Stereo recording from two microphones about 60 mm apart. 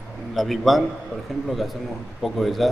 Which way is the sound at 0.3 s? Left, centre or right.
Centre.